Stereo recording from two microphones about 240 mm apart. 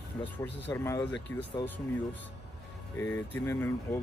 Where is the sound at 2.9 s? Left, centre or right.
Centre.